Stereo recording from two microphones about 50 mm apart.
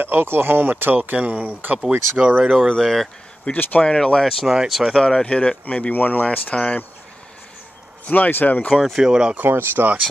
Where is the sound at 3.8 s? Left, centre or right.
Centre.